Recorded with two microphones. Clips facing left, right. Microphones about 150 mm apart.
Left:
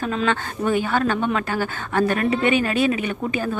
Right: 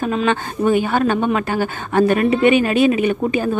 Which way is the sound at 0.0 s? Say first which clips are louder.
Right 4 dB; 15° right (ahead or behind).